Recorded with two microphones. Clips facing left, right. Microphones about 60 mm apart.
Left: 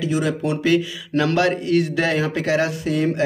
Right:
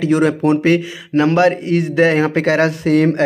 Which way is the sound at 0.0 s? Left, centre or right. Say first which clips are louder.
Right 7 dB; right.